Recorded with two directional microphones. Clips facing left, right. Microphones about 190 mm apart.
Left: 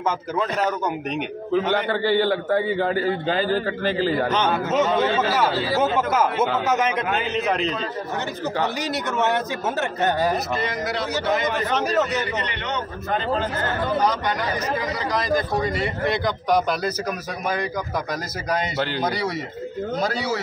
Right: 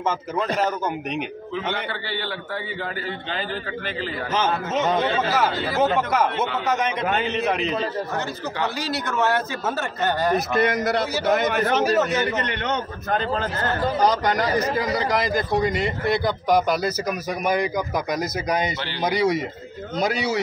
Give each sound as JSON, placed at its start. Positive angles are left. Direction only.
{"t": 1.5, "sound": "a man's voice", "side_deg": 45}
{"t": 4.3, "sound": "a man's voice", "side_deg": 0}
{"t": 8.8, "sound": "a man's voice", "side_deg": 20}
{"t": 10.6, "sound": "a man's voice", "side_deg": -60}
{"t": 11.7, "sound": "a man's voice", "side_deg": -5}
{"t": 12.4, "sound": "a man's voice", "side_deg": -45}
{"t": 16.4, "sound": "speech", "side_deg": -10}
{"t": 19.0, "sound": "speech", "side_deg": -15}